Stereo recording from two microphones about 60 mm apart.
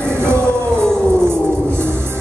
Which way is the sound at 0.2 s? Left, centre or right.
Right.